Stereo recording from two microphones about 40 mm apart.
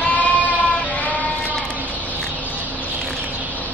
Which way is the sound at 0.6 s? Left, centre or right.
Left.